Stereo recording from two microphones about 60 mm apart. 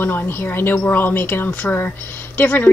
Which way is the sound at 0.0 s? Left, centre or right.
Left.